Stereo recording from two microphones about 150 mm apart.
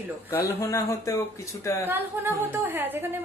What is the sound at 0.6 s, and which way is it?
Speech, 20° left (ahead or behind).